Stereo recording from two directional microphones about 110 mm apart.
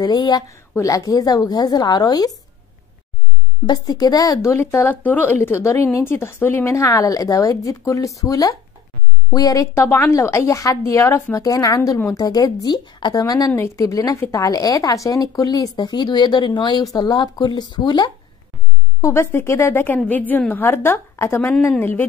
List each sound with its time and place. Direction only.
0.0 s a woman's voice: 40° left (ahead or behind)
3.6 s a woman's voice: 35° left (ahead or behind)
18.9 s a woman's voice: 25° left (ahead or behind)